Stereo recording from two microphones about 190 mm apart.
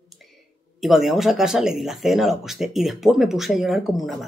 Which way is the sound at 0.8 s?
Centre (ahead or behind).